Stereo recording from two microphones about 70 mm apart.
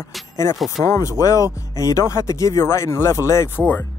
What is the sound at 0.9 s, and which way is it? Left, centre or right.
Speech, left.